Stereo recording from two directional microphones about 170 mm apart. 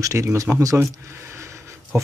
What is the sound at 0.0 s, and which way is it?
Speech, 20° right (ahead or behind).